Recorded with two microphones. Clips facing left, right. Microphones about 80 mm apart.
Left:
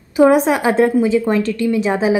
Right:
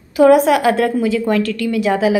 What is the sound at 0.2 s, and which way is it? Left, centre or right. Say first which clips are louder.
A woman's voice: right 2 dB; left.